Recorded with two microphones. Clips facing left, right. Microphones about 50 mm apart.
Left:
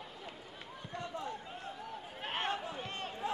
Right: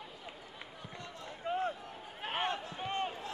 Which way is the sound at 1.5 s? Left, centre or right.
Right.